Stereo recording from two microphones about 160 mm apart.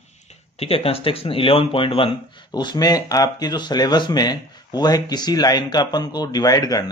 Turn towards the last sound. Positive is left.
turn(degrees=25)  # may be behind; listen again after turning